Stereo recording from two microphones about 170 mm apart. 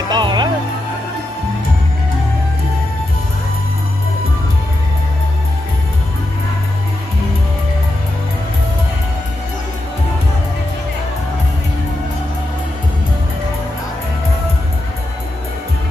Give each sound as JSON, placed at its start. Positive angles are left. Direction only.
{"t": 0.1, "sound": "music", "side_deg": -25}